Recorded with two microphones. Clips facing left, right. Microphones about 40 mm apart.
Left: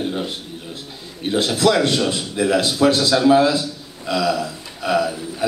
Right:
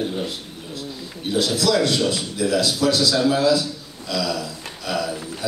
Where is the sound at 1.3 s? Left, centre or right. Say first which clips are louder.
Left 3 dB; left.